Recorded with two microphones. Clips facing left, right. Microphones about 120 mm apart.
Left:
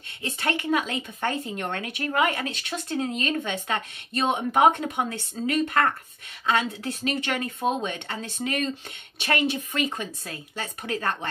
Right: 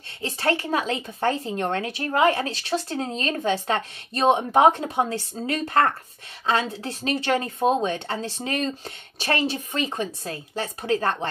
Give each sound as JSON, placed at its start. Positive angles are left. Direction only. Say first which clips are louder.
{"t": 0.2, "sound": "speech", "louder": "right 4 dB", "side_deg": -35}